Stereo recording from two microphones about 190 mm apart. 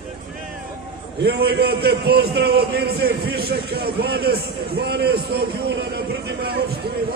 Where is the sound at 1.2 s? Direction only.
55° right (ahead or behind).